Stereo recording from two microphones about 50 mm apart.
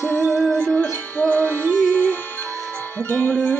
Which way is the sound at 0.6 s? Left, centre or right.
Left.